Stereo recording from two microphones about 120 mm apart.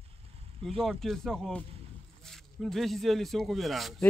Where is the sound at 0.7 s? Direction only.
5° left (ahead or behind).